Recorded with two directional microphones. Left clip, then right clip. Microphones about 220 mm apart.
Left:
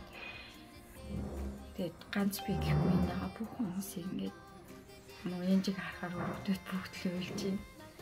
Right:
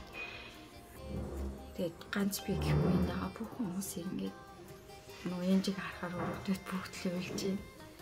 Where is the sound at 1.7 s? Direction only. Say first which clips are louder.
Right 1 dB; 10° right (ahead or behind).